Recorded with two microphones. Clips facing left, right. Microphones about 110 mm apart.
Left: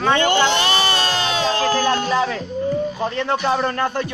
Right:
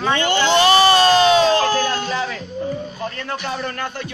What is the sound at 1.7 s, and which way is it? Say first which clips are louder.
A man's voice: left 3 dB; 35° left (ahead or behind).